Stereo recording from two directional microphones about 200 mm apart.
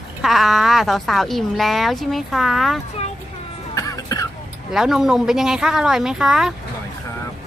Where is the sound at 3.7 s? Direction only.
15° left (ahead or behind).